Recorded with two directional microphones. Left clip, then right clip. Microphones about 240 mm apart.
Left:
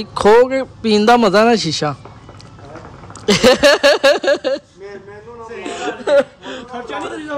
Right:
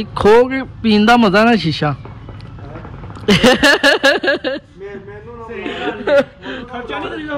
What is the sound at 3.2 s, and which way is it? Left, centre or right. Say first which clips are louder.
Speech: even; left.